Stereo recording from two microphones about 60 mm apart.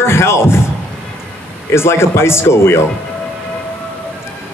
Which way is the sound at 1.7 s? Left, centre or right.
Left.